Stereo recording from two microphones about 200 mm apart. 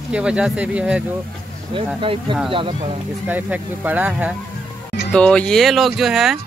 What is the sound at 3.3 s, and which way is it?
Speech, 5° right (ahead or behind).